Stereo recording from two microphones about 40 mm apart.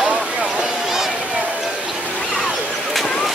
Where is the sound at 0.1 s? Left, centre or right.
Right.